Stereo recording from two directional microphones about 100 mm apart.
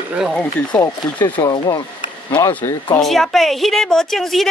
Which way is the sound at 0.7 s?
45° left (ahead or behind).